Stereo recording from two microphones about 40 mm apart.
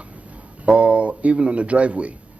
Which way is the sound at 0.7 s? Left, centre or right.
Right.